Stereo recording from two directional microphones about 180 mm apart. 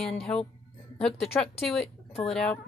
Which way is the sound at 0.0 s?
5° left (ahead or behind).